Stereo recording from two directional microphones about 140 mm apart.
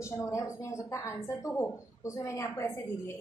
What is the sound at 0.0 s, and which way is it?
A woman's voice, 20° left (ahead or behind).